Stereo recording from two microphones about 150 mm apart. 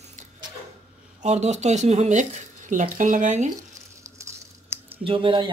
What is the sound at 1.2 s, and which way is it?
Speech, 50° right (ahead or behind).